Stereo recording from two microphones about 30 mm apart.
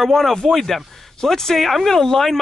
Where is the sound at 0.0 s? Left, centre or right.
Centre.